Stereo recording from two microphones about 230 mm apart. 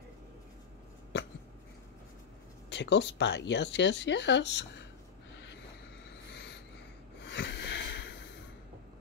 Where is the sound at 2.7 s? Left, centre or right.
Left.